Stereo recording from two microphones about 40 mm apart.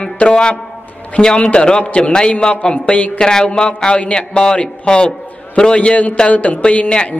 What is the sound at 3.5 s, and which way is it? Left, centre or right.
A man's voice, left.